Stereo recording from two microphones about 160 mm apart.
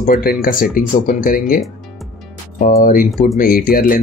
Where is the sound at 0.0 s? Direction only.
55° left (ahead or behind).